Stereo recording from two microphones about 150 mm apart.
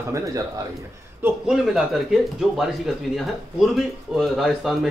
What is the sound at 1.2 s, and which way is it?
A man's voice, 5° right (ahead or behind).